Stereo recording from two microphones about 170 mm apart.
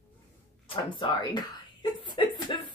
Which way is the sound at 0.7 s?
30° left (ahead or behind).